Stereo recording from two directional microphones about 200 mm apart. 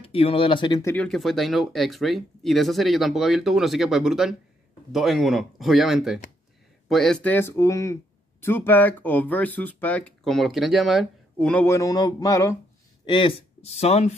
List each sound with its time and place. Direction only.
0.0 s speech: 25° left (ahead or behind)
0.9 s speech: 5° left (ahead or behind); by 14.1 s 30° left (ahead or behind)